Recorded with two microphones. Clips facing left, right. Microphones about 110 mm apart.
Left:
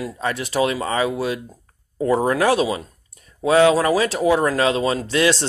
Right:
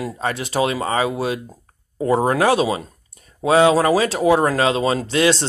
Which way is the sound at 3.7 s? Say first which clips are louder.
Right 2 dB; 30° right (ahead or behind).